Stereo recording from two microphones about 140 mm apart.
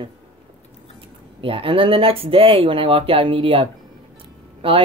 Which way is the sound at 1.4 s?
40° right (ahead or behind).